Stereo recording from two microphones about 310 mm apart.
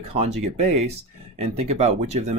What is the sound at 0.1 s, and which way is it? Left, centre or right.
Speech, centre.